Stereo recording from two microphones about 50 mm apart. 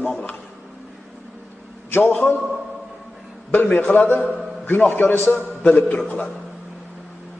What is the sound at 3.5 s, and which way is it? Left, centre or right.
Speech, left.